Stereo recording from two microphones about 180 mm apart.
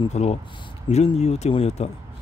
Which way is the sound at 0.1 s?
35° left (ahead or behind).